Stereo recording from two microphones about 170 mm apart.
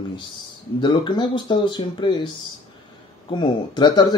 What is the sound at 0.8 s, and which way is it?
Speech, 25° left (ahead or behind).